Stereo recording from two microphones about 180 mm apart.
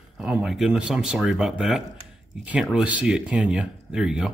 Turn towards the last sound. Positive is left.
turn(degrees=-5)  # may be behind; listen again after turning